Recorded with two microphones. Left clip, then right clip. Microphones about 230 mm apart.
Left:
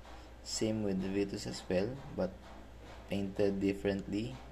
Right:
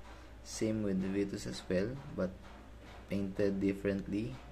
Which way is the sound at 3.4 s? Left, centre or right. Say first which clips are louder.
Left 1 dB; centre.